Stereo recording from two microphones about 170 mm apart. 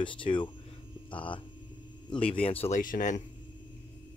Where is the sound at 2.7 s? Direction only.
50° left (ahead or behind).